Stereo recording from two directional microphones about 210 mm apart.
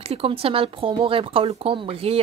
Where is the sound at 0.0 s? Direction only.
25° right (ahead or behind).